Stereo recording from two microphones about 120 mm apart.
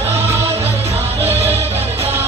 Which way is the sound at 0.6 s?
55° right (ahead or behind).